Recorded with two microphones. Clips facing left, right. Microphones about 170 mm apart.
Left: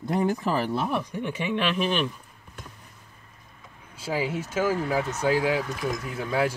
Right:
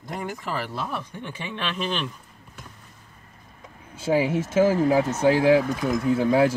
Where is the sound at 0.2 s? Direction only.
25° left (ahead or behind); by 2.0 s 10° left (ahead or behind).